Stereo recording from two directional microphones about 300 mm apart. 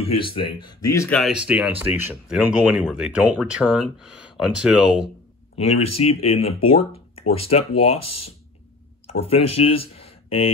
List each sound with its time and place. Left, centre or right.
0.2 s speech: centre
1.2 s speech: centre
5.6 s speech: centre
9.3 s speech: centre